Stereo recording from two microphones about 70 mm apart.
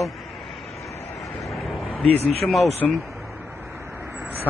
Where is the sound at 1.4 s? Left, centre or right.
Centre.